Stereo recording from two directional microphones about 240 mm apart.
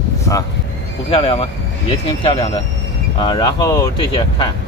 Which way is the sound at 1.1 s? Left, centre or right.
Left.